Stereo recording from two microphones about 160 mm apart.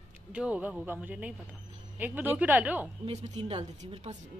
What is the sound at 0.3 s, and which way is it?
Speech, 10° right (ahead or behind).